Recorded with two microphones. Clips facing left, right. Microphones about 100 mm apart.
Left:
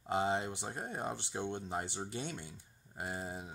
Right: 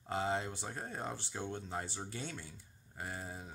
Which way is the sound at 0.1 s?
20° left (ahead or behind).